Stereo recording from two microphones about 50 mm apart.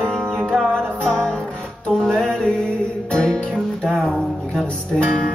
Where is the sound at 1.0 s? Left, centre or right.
Left.